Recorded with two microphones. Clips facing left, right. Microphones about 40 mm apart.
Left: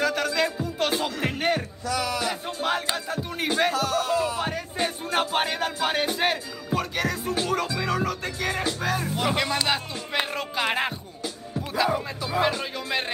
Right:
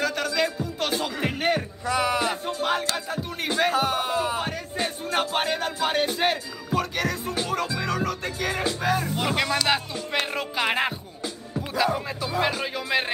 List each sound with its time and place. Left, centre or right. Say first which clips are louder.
0.0 s music: left 1 dB; centre
1.9 s a sound: right 3 dB; right
2.4 s a sound: right 1 dB; centre
3.1 s music: left 1 dB; centre
3.7 s music: even; right
4.4 s music: left 1 dB; centre